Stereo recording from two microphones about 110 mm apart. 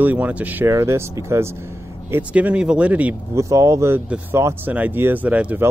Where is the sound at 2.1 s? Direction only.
15° right (ahead or behind).